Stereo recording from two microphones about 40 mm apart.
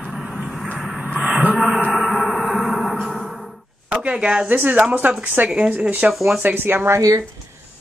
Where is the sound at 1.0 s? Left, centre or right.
Right.